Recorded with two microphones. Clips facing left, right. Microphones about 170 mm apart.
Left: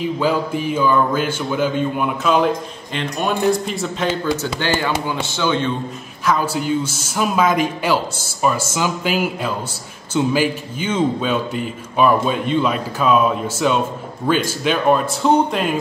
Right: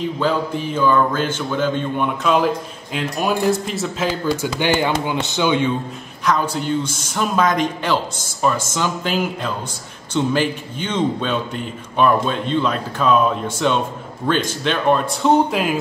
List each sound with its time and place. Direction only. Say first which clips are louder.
0.0 s speech: left 1 dB; 10° left (ahead or behind)
4.3 s speech: right 1 dB; 10° right (ahead or behind)
6.2 s a man's voice: left 1 dB; 5° left (ahead or behind)